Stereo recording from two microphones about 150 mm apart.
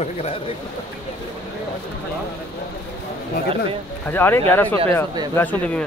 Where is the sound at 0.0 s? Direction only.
45° left (ahead or behind).